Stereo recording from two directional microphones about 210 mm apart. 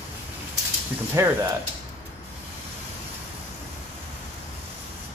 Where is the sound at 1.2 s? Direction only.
15° right (ahead or behind).